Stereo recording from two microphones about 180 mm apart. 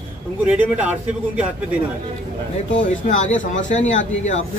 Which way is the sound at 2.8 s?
45° left (ahead or behind).